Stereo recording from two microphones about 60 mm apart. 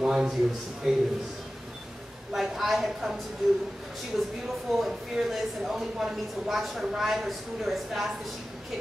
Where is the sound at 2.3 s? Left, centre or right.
Centre.